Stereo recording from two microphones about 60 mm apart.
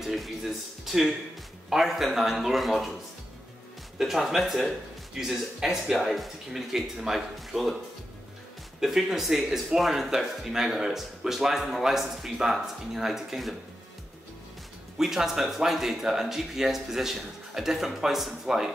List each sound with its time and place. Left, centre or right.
0.0 s speech: centre
4.0 s speech: centre
8.8 s speech: centre
15.0 s speech: centre